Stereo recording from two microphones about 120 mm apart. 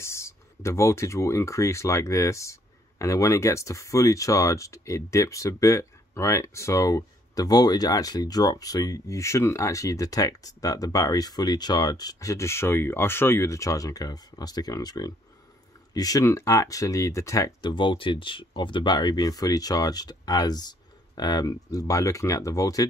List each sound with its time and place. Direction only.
0.0 s speech: 25° left (ahead or behind)